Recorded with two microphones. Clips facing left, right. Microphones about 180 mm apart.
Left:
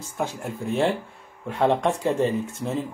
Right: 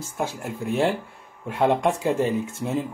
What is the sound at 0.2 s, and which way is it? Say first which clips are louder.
Speech: even; 5° right (ahead or behind).